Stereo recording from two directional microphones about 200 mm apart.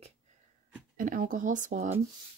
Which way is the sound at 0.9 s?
45° right (ahead or behind).